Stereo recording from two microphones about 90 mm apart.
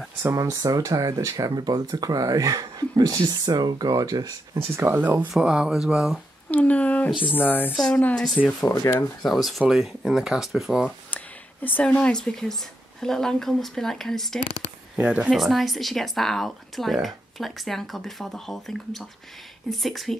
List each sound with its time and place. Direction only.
0.2 s speech: 30° right (ahead or behind)
4.7 s speech: 25° right (ahead or behind)
5.3 s speech: 10° right (ahead or behind)
6.5 s a sound: 15° left (ahead or behind)
7.3 s speech: 20° left (ahead or behind)
7.7 s speech: 10° left (ahead or behind)
8.8 s speech: 35° left (ahead or behind)
9.2 s speech: centre (ahead or behind)
11.1 s speech: 20° left (ahead or behind)
15.0 s speech: 10° right (ahead or behind)
15.3 s speech: centre (ahead or behind)